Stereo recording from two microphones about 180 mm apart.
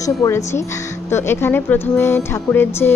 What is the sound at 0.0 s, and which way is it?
A woman's voice, 20° left (ahead or behind).